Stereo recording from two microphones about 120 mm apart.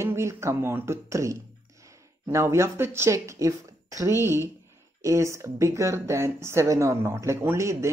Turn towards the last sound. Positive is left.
turn(degrees=-25)  # may be behind; listen again after turning